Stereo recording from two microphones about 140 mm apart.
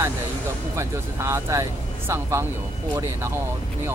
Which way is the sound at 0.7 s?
20° right (ahead or behind).